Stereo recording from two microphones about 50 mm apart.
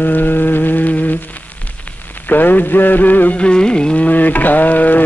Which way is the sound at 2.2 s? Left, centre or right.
Left.